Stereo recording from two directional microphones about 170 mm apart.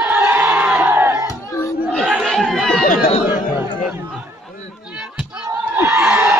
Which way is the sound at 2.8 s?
55° left (ahead or behind).